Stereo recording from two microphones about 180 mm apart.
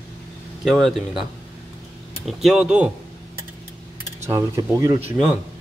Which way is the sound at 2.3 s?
Centre (ahead or behind).